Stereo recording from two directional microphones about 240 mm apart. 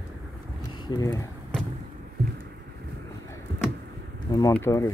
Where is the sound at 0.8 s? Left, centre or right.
Centre.